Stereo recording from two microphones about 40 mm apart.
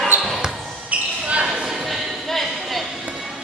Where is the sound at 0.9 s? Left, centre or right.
Right.